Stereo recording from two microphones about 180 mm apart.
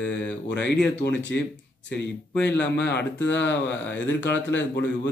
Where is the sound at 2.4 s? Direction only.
70° left (ahead or behind).